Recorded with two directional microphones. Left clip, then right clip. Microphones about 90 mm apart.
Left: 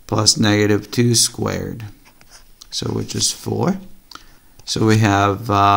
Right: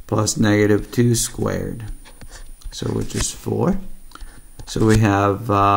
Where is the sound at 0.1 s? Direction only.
20° left (ahead or behind).